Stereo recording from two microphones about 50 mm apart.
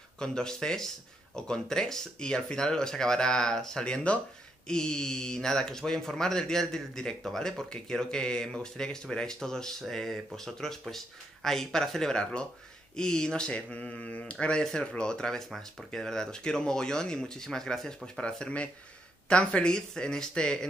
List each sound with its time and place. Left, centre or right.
0.2 s speech: centre